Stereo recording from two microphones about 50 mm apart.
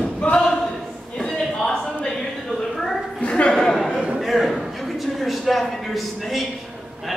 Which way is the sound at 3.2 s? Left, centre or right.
Left.